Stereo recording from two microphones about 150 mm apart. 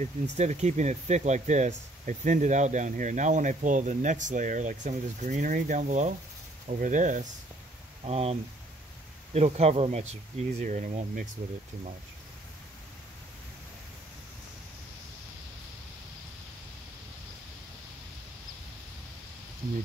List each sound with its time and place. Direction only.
0.0 s speech: 50° right (ahead or behind)
8.0 s speech: 40° right (ahead or behind)